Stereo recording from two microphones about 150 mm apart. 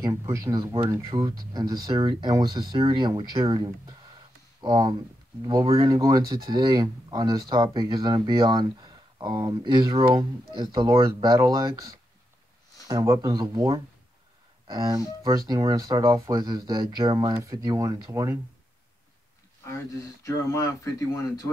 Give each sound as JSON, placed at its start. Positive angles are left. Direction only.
{"t": 0.0, "sound": "speech", "side_deg": -20}
{"t": 17.3, "sound": "speech", "side_deg": -20}
{"t": 20.2, "sound": "speech", "side_deg": 20}